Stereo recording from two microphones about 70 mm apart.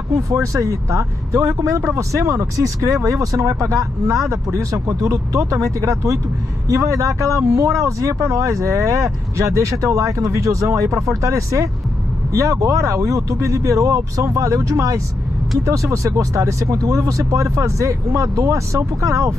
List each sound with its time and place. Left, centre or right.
0.3 s speech: right